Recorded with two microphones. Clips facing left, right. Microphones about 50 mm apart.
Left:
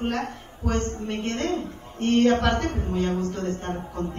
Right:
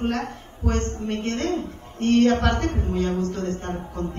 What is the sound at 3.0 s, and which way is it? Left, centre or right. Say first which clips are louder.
Speech: right 1 dB; left.